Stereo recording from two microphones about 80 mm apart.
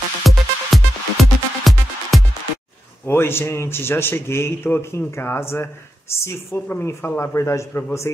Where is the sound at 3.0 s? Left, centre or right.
Left.